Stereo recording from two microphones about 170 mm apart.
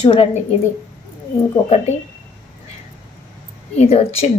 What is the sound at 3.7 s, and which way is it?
Speech, 40° left (ahead or behind).